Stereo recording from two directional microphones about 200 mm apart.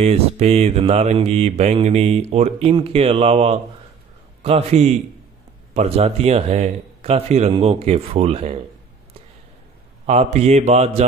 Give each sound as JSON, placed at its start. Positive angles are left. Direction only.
{"t": 0.0, "sound": "mantra", "side_deg": -30}
{"t": 10.0, "sound": "mantra", "side_deg": -35}